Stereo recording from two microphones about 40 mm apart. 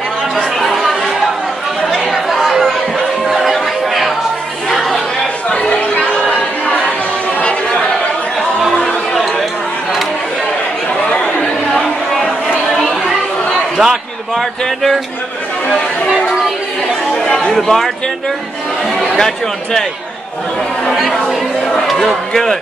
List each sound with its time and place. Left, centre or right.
0.7 s chatter: centre
2.0 s chatter: centre
4.6 s chatter: centre
5.5 s chatter: left
13.7 s a sound: centre
17.2 s chatter: left
17.5 s a man's voice: centre
19.1 s a man's voice: centre
21.8 s a man's voice: centre